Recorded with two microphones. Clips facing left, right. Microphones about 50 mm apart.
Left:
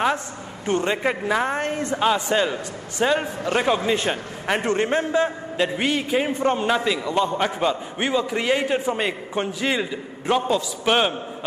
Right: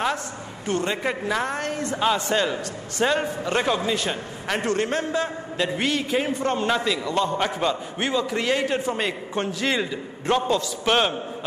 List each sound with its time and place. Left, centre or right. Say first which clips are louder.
0.7 s a woman's voice: left 3 dB; left
2.0 s a man's voice: left 2 dB; centre
3.8 s a man's voice: left 3 dB; left; by 11.1 s centre